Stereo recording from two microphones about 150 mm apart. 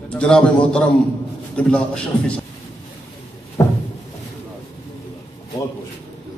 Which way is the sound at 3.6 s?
20° left (ahead or behind).